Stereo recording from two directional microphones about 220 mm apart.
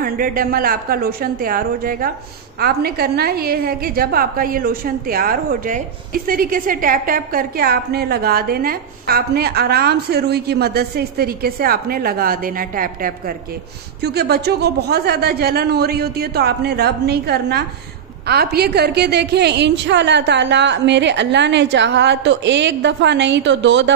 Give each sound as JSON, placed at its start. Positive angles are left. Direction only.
{"t": 0.0, "sound": "a woman's voice", "side_deg": -40}